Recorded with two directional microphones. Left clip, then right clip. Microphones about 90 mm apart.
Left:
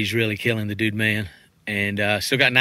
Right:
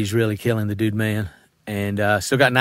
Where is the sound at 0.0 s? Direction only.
55° right (ahead or behind).